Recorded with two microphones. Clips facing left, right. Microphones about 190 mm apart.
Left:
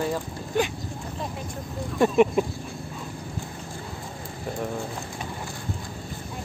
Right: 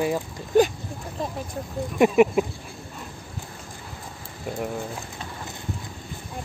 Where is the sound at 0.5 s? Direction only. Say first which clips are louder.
Right 7 dB; 40° right (ahead or behind).